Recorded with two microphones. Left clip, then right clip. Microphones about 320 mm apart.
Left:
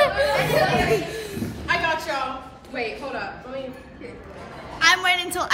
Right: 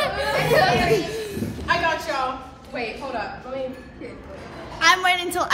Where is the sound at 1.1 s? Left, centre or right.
Centre.